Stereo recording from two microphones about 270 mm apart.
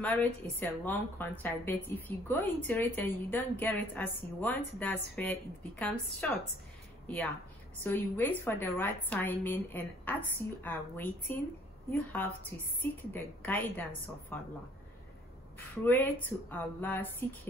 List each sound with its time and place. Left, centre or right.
0.0 s a woman's voice: centre
7.8 s a woman's voice: centre
15.7 s a woman's voice: centre